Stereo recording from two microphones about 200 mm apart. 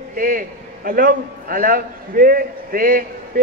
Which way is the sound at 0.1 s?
45° right (ahead or behind).